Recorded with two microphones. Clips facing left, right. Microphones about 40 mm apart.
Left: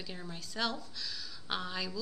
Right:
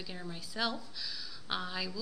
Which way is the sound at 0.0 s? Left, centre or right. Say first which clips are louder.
Right 1 dB; centre.